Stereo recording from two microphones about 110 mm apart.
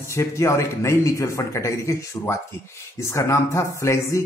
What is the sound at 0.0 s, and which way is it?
Speech, 25° left (ahead or behind).